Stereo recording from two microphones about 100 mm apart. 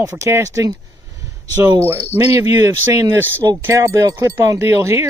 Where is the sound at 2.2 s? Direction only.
30° right (ahead or behind).